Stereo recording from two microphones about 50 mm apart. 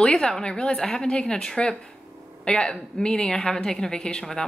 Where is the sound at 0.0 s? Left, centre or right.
Centre.